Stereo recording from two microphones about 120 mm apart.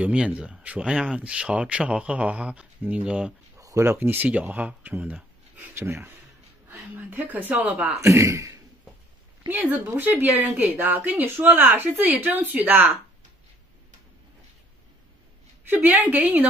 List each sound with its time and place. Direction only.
0.0 s speech: 10° right (ahead or behind)
3.5 s a woman's voice: 25° right (ahead or behind)
8.1 s a man's voice: 25° right (ahead or behind)
15.7 s speech: 15° right (ahead or behind)